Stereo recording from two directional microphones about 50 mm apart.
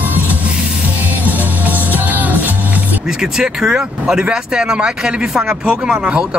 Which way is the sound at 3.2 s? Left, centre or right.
Centre.